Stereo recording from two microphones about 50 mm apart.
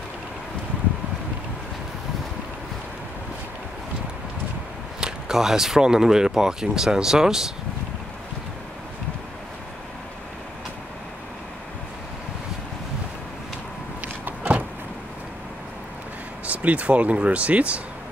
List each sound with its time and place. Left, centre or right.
5.0 s speech: centre
14.0 s vehicle: right
16.4 s speech: right